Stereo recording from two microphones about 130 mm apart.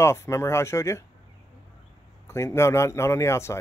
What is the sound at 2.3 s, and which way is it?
Speech, 20° left (ahead or behind).